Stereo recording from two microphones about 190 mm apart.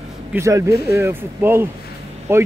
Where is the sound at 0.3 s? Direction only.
15° right (ahead or behind).